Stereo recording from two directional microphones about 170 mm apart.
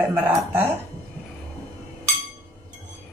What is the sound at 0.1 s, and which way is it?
Speech, 10° right (ahead or behind).